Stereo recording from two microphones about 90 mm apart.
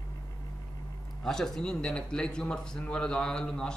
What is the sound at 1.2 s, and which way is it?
Speech, 5° left (ahead or behind).